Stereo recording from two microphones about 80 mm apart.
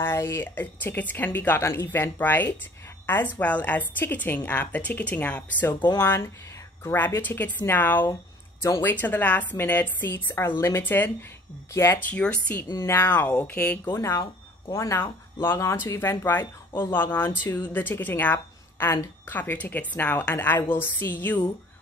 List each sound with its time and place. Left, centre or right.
0.0 s a woman's voice: left
6.0 s a woman's voice: left
12.1 s a woman's voice: centre
12.7 s a woman's voice: left
13.9 s a woman's voice: left